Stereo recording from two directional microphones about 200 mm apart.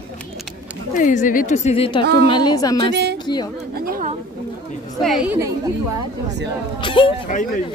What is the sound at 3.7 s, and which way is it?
Speech, 45° right (ahead or behind).